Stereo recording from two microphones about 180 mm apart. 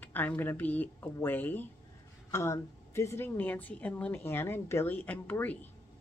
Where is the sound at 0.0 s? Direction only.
10° left (ahead or behind).